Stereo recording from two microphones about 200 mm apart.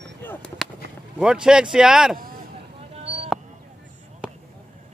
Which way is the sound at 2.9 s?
30° right (ahead or behind).